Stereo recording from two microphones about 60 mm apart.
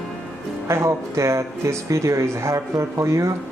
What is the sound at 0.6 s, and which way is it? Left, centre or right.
Music, right.